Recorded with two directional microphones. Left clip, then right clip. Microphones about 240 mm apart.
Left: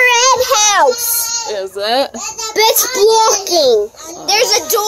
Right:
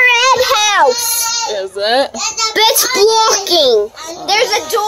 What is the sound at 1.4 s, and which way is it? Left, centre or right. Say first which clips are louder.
Baby cry: even; centre.